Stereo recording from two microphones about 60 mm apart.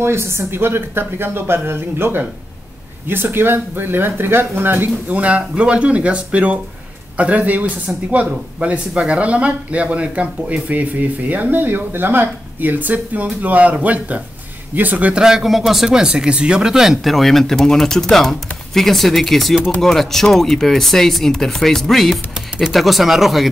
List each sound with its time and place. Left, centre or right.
0.0 s speech: right
5.1 s speech: right
15.2 s speech: centre